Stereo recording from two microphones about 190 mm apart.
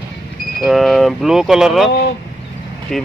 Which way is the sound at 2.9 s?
Centre (ahead or behind).